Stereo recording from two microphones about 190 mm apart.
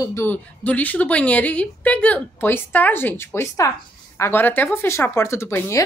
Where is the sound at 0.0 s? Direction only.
15° left (ahead or behind).